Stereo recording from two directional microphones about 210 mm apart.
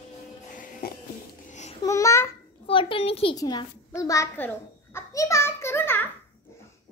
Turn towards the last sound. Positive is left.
turn(degrees=10)  # may be behind; listen again after turning